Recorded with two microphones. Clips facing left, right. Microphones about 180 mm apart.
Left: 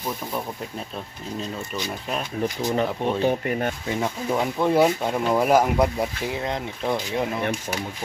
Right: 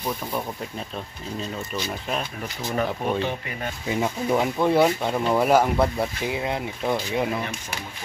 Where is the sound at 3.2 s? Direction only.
45° left (ahead or behind).